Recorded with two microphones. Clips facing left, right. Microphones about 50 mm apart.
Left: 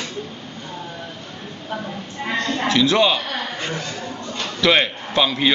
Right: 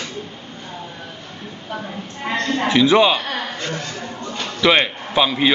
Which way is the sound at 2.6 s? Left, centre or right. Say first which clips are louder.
Right 3 dB; centre.